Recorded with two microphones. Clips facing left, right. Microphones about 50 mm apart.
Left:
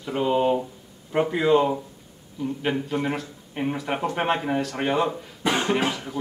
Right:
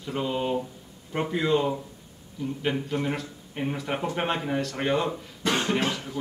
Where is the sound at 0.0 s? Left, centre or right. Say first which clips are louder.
Left 6 dB; centre.